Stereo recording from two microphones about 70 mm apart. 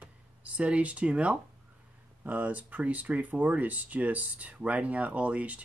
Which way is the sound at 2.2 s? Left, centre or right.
Right.